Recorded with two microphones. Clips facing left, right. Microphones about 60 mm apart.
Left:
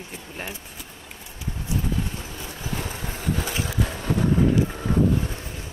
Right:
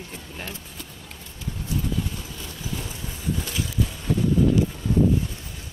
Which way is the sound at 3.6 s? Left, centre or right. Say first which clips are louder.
Left 1 dB; left.